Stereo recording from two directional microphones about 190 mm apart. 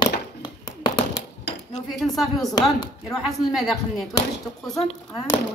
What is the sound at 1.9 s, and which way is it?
Speech, centre (ahead or behind).